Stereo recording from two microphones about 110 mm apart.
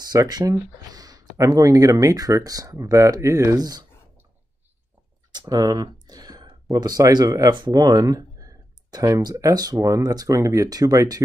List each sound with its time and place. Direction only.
0.1 s speech: 35° right (ahead or behind)
5.4 s speech: 35° right (ahead or behind)